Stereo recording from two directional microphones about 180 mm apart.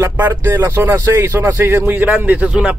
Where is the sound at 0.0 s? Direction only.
15° right (ahead or behind).